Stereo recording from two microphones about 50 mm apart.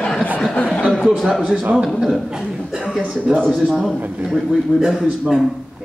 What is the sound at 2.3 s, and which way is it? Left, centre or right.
Cough, centre.